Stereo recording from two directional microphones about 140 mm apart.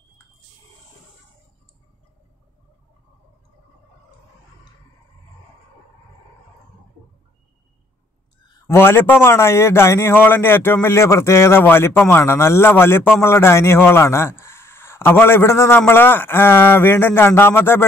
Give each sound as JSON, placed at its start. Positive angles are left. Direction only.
{"t": 8.5, "sound": "a man's voice", "side_deg": 15}